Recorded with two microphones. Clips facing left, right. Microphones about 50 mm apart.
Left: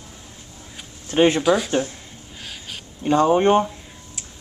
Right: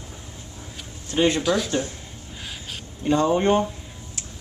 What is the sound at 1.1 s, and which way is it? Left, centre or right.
Speech, left.